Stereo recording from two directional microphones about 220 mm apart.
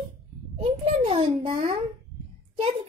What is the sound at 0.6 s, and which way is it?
Child singing, 25° right (ahead or behind).